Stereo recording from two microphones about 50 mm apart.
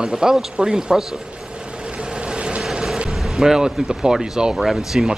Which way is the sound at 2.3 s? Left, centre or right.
Right.